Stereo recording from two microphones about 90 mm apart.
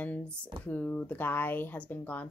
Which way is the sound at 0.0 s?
15° left (ahead or behind).